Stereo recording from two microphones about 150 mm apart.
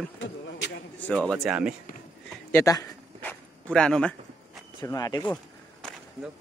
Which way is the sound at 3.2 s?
5° left (ahead or behind).